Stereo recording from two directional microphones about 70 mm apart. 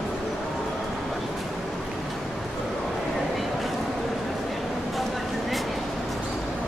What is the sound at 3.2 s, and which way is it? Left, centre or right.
Vehicle, centre.